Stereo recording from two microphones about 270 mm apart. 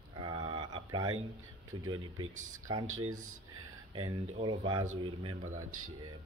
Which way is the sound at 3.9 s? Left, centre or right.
Centre.